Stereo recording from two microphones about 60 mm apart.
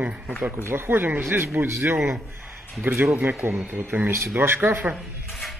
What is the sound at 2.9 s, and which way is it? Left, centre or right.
A man's voice, right.